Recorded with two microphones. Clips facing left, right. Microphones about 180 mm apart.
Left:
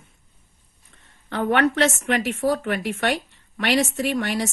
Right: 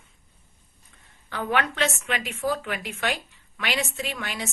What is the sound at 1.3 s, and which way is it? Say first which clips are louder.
A woman's voice: left 6 dB; 65° left (ahead or behind).